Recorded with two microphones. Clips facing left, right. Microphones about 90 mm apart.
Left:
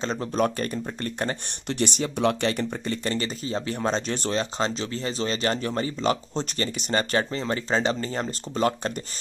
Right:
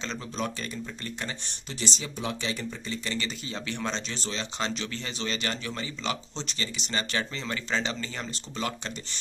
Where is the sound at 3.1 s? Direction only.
35° left (ahead or behind).